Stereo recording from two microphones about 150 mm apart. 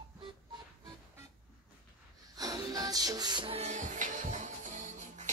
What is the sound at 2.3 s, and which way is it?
Music, 25° right (ahead or behind).